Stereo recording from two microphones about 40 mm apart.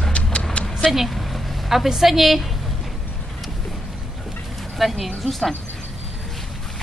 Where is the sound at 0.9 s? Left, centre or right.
Centre.